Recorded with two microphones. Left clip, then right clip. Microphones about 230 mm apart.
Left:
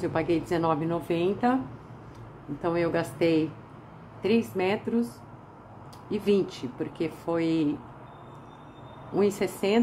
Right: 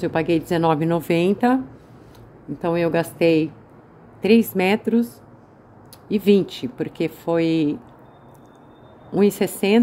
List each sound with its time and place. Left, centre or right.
0.0 s speech: right
2.6 s speech: right
6.0 s speech: right
9.1 s speech: right